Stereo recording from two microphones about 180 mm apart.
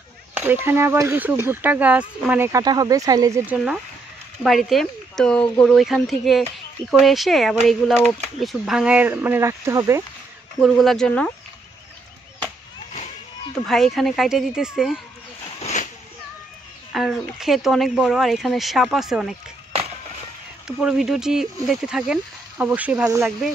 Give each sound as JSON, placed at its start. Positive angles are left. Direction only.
{"t": 0.3, "sound": "speech", "side_deg": -10}
{"t": 10.6, "sound": "speech", "side_deg": 0}
{"t": 13.7, "sound": "speech", "side_deg": 0}
{"t": 15.6, "sound": "a sound", "side_deg": 45}
{"t": 16.9, "sound": "speech", "side_deg": 0}
{"t": 20.6, "sound": "speech", "side_deg": 0}